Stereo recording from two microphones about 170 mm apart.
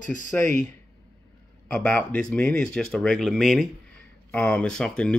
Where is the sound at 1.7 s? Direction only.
10° left (ahead or behind).